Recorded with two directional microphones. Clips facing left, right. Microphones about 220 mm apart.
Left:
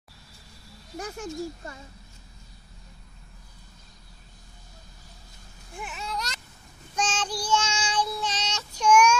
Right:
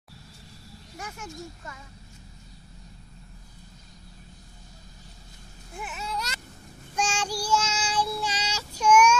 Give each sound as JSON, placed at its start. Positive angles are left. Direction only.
{"t": 0.9, "sound": "speech", "side_deg": 35}
{"t": 5.8, "sound": "speech", "side_deg": -5}
{"t": 7.0, "sound": "child singing", "side_deg": -10}